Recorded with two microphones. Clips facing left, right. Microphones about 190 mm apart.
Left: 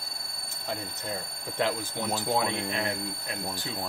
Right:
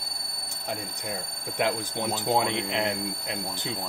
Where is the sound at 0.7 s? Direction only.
15° right (ahead or behind).